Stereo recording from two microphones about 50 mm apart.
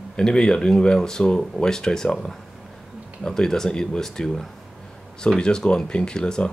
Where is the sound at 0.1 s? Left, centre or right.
Centre.